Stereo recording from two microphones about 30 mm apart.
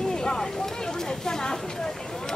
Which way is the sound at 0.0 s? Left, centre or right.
Left.